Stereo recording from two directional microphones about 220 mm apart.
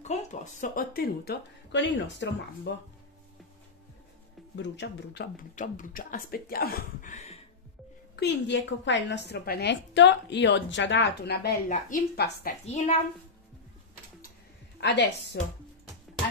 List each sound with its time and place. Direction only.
0.0 s a woman's voice: 30° left (ahead or behind); by 2.7 s 55° left (ahead or behind)
4.6 s a woman's voice: 50° left (ahead or behind)
5.6 s speech: 35° left (ahead or behind)
8.2 s a woman's voice: 55° left (ahead or behind)
11.7 s speech: 40° left (ahead or behind)
14.8 s a woman's voice: 50° left (ahead or behind)